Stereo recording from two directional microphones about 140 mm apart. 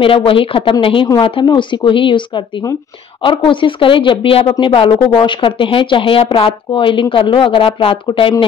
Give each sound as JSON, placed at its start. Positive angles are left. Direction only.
{"t": 0.0, "sound": "speech", "side_deg": 40}